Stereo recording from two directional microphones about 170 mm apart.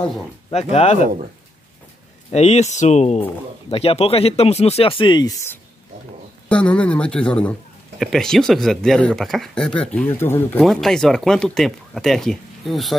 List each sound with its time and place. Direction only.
0.5 s speech: 35° left (ahead or behind)
2.3 s speech: 40° left (ahead or behind); by 5.6 s 20° left (ahead or behind)
6.5 s a man's voice: 5° left (ahead or behind)
10.6 s speech: centre (ahead or behind)